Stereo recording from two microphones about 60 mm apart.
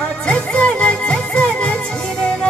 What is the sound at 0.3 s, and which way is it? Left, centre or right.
Music, centre.